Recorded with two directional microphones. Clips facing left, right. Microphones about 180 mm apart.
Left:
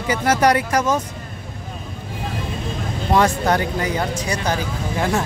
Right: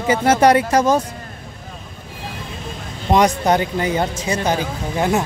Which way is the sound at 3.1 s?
20° right (ahead or behind).